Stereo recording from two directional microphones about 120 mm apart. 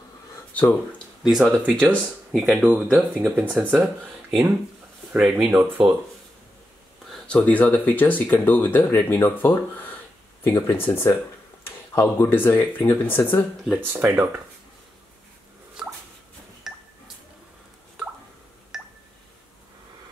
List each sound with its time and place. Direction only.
0.6 s speech: 15° left (ahead or behind)
1.2 s speech: 5° right (ahead or behind)
5.5 s speech: 20° right (ahead or behind)
7.1 s speech: 10° left (ahead or behind)
13.7 s speech: 15° right (ahead or behind)
16.6 s a sound: 5° right (ahead or behind)
18.7 s a sound: 5° right (ahead or behind)